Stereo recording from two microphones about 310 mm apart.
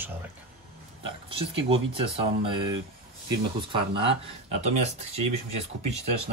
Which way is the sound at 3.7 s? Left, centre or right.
Centre.